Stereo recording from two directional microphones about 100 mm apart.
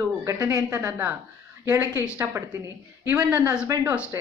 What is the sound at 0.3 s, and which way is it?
A woman's voice, 35° right (ahead or behind).